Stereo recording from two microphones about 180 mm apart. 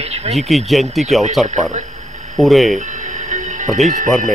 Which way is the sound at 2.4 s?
Centre (ahead or behind).